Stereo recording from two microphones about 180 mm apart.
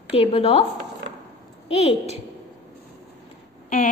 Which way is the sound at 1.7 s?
35° left (ahead or behind).